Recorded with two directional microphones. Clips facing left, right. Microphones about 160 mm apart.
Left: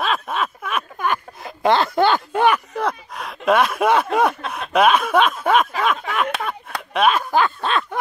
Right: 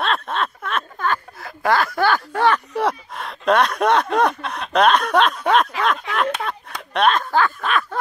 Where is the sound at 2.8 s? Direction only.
5° right (ahead or behind).